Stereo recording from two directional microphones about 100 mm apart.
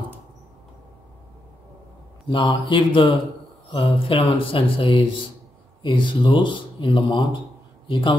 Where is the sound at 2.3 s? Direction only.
55° left (ahead or behind).